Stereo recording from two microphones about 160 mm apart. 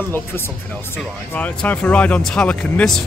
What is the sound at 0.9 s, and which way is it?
Speech, 10° left (ahead or behind).